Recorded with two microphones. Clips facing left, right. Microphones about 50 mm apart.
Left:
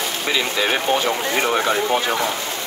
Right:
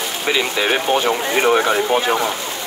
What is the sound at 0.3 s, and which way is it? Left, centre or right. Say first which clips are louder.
Speech: right 3 dB; right.